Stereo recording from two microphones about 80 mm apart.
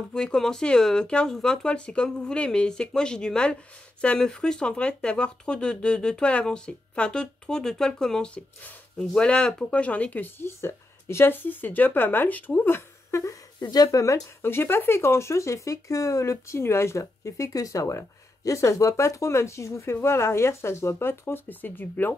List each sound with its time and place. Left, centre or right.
0.1 s speech: centre
10.4 s speech: left
13.6 s speech: left
13.8 s speech: left
14.4 s speech: left